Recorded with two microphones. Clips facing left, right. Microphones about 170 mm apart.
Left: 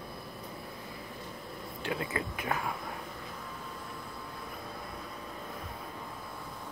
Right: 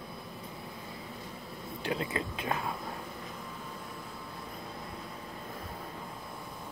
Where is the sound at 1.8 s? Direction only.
25° right (ahead or behind).